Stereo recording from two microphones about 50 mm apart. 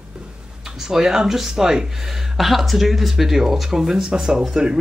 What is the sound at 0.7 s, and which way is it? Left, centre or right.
Speech, centre.